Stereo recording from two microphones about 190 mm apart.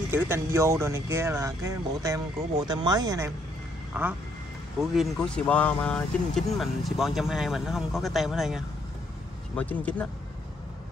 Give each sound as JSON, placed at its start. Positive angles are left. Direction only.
{"t": 0.1, "sound": "speech", "side_deg": -15}
{"t": 3.9, "sound": "speech", "side_deg": -10}